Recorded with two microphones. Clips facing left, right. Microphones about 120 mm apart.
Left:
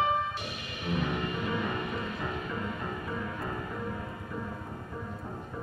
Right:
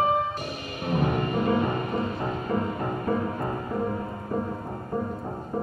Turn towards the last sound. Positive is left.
turn(degrees=-40)  # may be behind; listen again after turning